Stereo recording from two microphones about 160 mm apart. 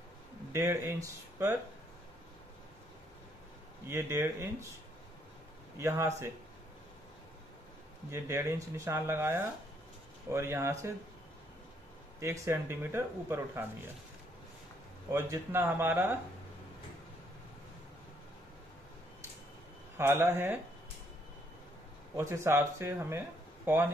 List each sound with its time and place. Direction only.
0.5 s speech: 15° right (ahead or behind)
3.8 s speech: 15° right (ahead or behind)
5.8 s speech: 15° right (ahead or behind)
8.1 s speech: 15° right (ahead or behind)
12.2 s speech: 15° right (ahead or behind)
15.0 s speech: 20° right (ahead or behind)
20.0 s speech: 15° right (ahead or behind)
22.1 s speech: 15° right (ahead or behind)